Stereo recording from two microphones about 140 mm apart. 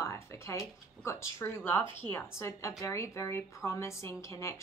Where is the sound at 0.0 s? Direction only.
20° left (ahead or behind).